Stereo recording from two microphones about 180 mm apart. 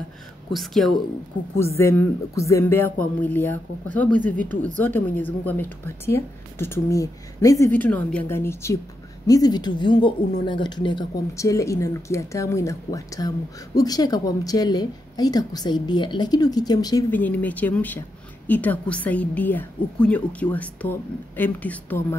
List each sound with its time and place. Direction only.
0.5 s speech: centre (ahead or behind)
1.8 s a woman's voice: 15° left (ahead or behind)
17.1 s a woman's voice: 10° left (ahead or behind)